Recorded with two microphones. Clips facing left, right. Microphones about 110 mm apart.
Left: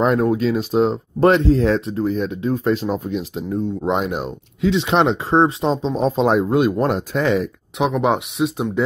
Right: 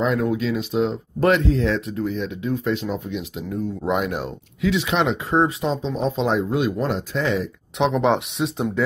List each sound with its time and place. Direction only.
0.0 s speech: 45° left (ahead or behind)
7.8 s speech: 5° left (ahead or behind)